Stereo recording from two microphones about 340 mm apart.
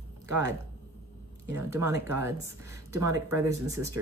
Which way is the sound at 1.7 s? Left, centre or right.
Centre.